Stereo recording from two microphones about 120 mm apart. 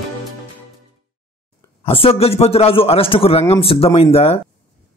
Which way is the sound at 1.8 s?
50° left (ahead or behind).